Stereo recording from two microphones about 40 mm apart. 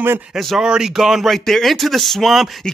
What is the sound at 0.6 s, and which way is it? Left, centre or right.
Speech, centre.